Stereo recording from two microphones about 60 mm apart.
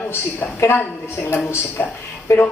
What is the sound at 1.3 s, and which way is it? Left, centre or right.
Speech, left.